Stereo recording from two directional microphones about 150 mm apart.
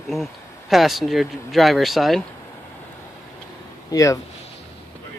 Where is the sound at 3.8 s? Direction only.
20° left (ahead or behind).